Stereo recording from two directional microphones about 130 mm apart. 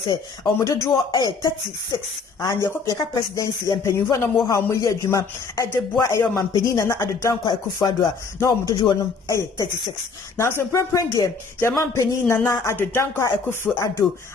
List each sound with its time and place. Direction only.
0.1 s speech: 25° left (ahead or behind)
10.3 s speech: 20° left (ahead or behind)